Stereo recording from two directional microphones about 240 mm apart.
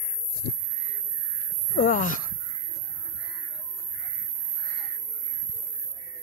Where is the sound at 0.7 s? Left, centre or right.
Right.